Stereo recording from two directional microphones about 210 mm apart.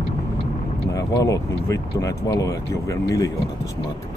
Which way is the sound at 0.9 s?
15° left (ahead or behind).